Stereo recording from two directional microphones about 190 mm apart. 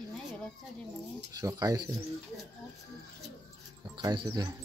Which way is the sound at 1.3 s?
20° right (ahead or behind).